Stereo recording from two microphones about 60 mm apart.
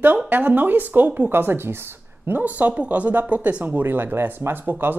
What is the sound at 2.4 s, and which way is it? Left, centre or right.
Speech, right.